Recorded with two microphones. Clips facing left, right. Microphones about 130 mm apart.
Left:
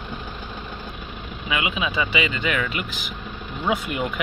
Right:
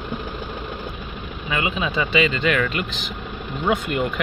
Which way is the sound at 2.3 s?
15° left (ahead or behind).